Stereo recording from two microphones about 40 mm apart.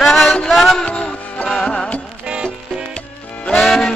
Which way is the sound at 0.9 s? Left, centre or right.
Left.